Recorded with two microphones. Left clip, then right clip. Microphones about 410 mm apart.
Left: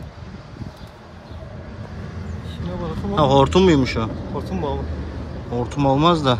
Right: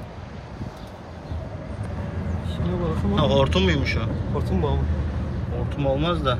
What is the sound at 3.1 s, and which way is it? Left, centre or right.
Speech, centre.